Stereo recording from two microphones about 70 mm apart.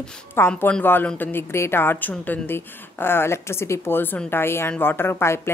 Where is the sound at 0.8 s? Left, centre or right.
Left.